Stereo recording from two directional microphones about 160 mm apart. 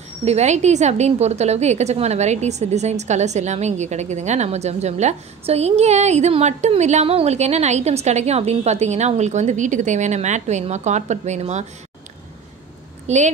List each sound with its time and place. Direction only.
0.2 s a woman's voice: 45° right (ahead or behind)
13.0 s speech: 45° right (ahead or behind)